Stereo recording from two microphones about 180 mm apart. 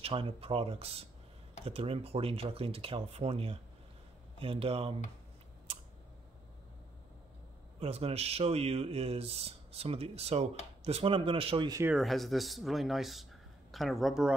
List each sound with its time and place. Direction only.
0.0 s speech: 30° right (ahead or behind)
7.8 s speech: 35° right (ahead or behind)
11.8 s speech: 5° right (ahead or behind)